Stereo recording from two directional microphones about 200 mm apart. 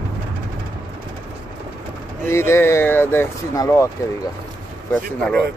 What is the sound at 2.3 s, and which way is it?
Speech, 15° left (ahead or behind).